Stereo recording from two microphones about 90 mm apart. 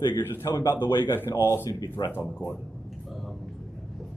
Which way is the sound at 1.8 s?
50° left (ahead or behind).